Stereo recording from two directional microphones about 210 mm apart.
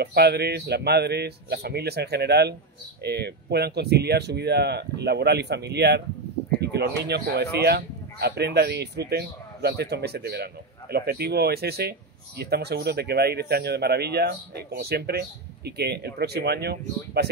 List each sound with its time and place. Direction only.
0.0 s speech: 50° right (ahead or behind)